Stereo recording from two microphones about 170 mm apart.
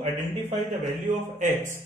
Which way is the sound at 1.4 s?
50° right (ahead or behind).